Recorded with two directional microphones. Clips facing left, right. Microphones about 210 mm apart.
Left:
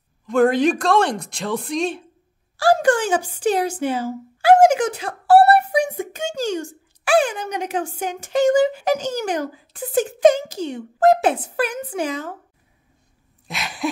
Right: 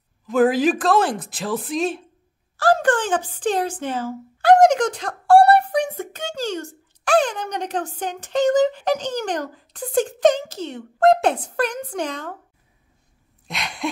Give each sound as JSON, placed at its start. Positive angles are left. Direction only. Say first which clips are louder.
{"t": 0.3, "sound": "speech", "louder": "left 1 dB", "side_deg": -5}
{"t": 2.5, "sound": "speech", "louder": "left 2 dB", "side_deg": 10}
{"t": 13.5, "sound": "gasp", "louder": "left 1 dB", "side_deg": 0}